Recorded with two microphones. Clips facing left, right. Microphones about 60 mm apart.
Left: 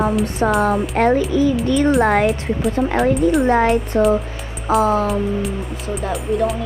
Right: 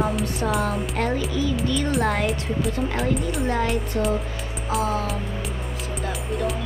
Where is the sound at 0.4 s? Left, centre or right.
Left.